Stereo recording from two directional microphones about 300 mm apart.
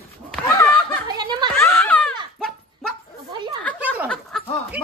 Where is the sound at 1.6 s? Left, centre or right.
Centre.